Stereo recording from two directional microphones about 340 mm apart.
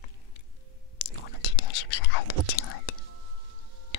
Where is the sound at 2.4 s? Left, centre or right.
Left.